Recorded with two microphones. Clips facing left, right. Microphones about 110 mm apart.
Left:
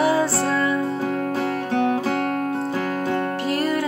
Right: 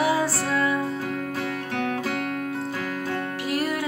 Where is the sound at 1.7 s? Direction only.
25° left (ahead or behind).